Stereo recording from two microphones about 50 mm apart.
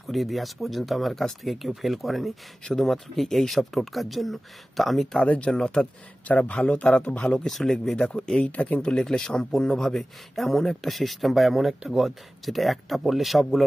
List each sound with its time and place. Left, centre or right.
0.0 s speech: centre
5.2 s speech: left
5.5 s a man's voice: centre
6.2 s speech: left
7.2 s a man's voice: centre
8.5 s speech: left
8.8 s a man's voice: centre